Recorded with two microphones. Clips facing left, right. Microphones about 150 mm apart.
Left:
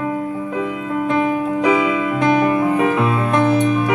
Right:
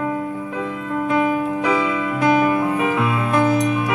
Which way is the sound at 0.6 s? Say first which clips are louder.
Left 2 dB; 10° left (ahead or behind).